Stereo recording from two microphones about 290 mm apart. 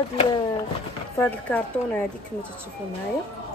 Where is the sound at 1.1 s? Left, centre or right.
Centre.